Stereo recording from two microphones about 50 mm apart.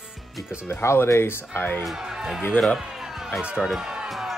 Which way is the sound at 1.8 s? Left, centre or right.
Centre.